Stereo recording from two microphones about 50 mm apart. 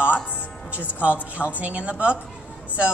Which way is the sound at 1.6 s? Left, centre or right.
Right.